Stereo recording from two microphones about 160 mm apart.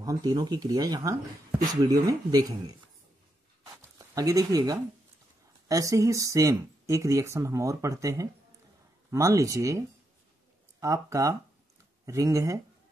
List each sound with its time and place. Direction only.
0.0 s speech: 25° right (ahead or behind)
3.7 s a sound: 20° right (ahead or behind)
5.7 s speech: 20° right (ahead or behind)